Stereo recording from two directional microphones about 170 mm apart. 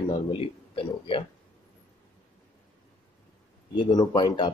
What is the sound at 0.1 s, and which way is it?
Speech, 30° left (ahead or behind).